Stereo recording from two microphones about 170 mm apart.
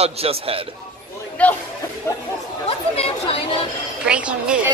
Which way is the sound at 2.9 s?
35° left (ahead or behind).